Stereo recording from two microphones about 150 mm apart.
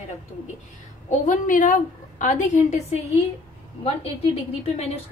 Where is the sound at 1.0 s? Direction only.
55° left (ahead or behind).